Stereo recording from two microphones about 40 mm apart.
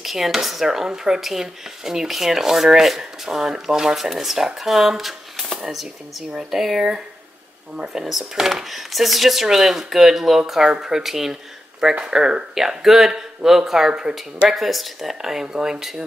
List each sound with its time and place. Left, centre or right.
0.0 s speech: centre
14.5 s speech: centre